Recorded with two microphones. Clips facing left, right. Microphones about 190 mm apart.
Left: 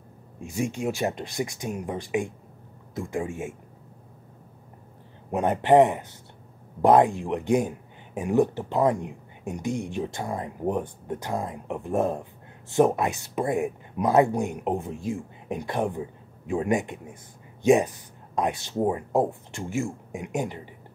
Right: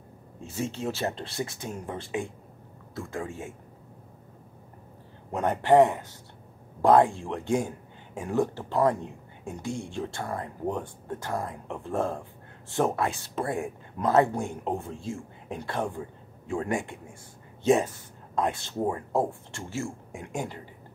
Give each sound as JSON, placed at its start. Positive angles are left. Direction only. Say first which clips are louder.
{"t": 0.4, "sound": "speech", "louder": "left 4 dB", "side_deg": 15}
{"t": 5.3, "sound": "speech", "louder": "left 2 dB", "side_deg": 15}